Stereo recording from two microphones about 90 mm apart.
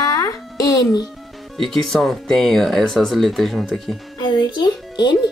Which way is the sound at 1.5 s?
5° left (ahead or behind).